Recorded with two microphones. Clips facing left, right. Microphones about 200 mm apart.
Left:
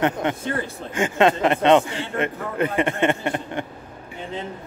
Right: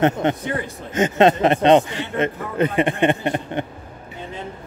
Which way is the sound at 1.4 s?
30° right (ahead or behind).